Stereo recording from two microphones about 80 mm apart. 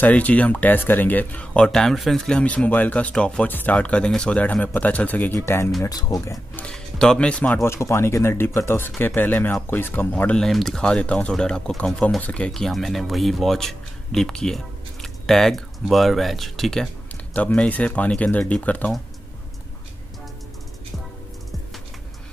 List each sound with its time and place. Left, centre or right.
0.0 s speech: centre
5.8 s speech: left
6.7 s speech: centre
7.6 s speech: left; by 10.4 s centre
10.4 s speech: centre
12.4 s speech: centre
17.3 s speech: centre